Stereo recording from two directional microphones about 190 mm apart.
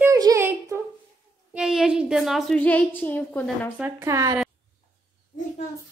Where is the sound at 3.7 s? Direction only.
10° right (ahead or behind).